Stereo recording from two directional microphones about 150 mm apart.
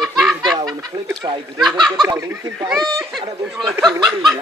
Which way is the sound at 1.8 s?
Centre (ahead or behind).